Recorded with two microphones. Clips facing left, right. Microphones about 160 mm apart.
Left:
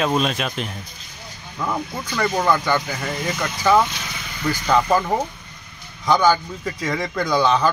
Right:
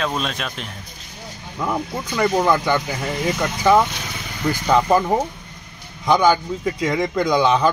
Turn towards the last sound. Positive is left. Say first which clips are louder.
# right 2 dB
turn(degrees=-15)  # may be behind; listen again after turning